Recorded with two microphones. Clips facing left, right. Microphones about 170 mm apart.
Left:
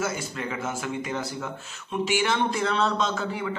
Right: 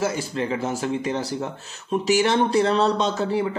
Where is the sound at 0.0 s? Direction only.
30° right (ahead or behind).